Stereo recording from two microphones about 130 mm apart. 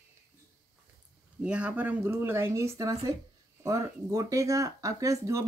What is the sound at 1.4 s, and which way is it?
Speech, 10° right (ahead or behind).